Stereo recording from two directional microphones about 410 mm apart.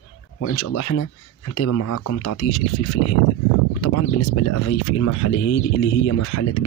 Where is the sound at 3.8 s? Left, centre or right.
Left.